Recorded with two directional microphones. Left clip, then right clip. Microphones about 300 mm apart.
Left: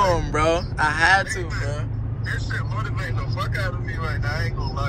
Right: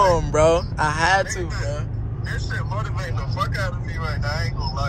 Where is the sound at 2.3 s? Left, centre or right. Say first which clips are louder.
Even; right.